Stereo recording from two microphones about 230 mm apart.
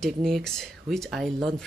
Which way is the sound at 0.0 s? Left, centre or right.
Centre.